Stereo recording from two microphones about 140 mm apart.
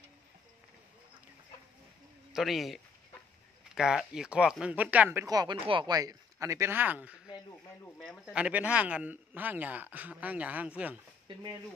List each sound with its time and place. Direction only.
2.3 s speech: centre (ahead or behind)
5.2 s speech: 25° right (ahead or behind); by 11.0 s 10° right (ahead or behind)